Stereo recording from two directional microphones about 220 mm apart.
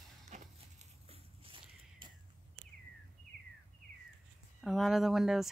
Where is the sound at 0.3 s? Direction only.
30° right (ahead or behind).